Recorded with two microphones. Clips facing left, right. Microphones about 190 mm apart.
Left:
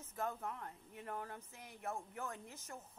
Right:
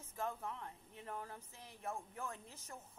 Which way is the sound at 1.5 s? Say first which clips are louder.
Even; 30° right (ahead or behind).